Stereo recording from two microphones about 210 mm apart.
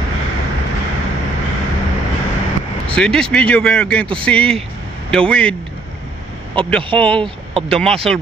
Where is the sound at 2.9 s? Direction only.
5° left (ahead or behind).